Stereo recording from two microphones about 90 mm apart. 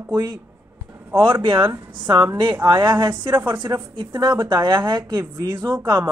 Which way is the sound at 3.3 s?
25° right (ahead or behind).